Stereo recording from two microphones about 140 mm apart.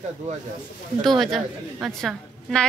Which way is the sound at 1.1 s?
Centre (ahead or behind).